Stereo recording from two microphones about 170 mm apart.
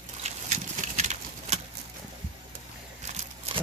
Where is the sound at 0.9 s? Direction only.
45° right (ahead or behind).